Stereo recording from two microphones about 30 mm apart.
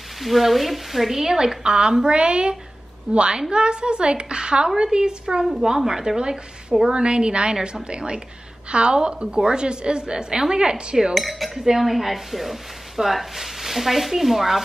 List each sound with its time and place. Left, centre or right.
0.2 s speech: centre
1.6 s a woman's voice: right
7.0 s a woman's voice: right
11.1 s speech: centre